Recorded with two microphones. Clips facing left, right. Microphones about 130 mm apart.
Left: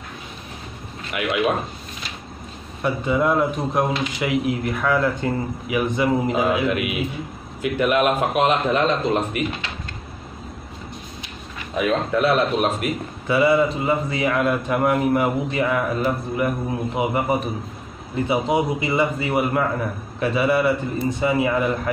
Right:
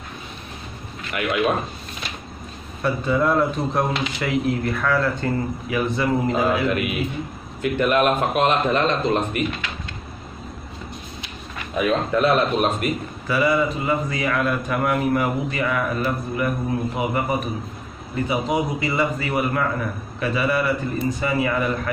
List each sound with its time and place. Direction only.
1.1 s speech: 5° left (ahead or behind)
2.8 s speech: 15° left (ahead or behind)
11.7 s speech: centre (ahead or behind)
13.3 s a man's voice: 25° left (ahead or behind)